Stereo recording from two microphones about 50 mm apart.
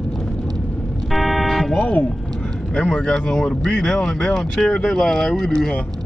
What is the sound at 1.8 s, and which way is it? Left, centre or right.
Music, left.